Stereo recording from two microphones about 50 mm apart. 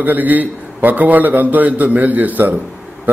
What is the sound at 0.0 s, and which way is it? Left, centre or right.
A man's voice, right.